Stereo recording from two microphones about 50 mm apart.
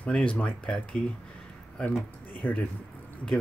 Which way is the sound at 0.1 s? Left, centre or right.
Left.